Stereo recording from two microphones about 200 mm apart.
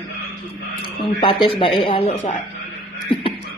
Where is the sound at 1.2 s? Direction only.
25° left (ahead or behind).